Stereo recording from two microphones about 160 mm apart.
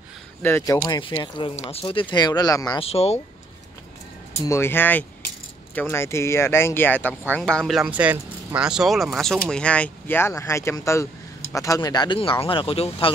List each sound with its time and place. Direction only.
0.4 s speech: 15° left (ahead or behind)
0.8 s speech: 30° left (ahead or behind)
2.8 s speech: 40° left (ahead or behind)
4.5 s speech: 15° left (ahead or behind); by 13.1 s 35° left (ahead or behind)